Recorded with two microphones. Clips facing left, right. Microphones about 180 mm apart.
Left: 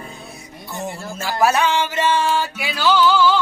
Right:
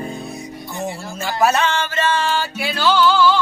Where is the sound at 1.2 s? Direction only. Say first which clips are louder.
Even; 10° left (ahead or behind).